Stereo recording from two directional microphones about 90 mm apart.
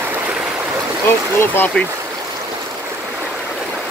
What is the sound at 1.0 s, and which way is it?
Speech, 25° left (ahead or behind).